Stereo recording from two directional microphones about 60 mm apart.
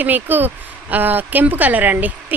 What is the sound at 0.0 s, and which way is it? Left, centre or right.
Speech, right.